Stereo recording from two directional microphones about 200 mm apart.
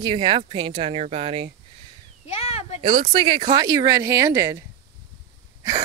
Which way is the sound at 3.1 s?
20° right (ahead or behind).